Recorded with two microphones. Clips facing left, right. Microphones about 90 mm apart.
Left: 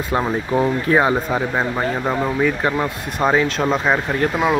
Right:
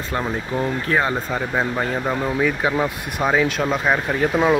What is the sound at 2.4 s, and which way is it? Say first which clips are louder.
Speech: right 1 dB; centre (ahead or behind).